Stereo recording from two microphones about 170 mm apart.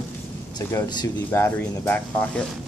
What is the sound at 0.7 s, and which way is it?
Speech, 15° left (ahead or behind).